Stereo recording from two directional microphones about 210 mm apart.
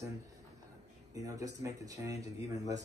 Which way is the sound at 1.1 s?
15° right (ahead or behind).